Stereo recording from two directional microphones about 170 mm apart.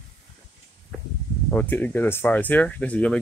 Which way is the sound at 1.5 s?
10° left (ahead or behind).